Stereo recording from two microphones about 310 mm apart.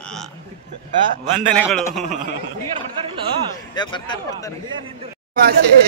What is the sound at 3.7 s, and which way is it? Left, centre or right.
Speech, centre.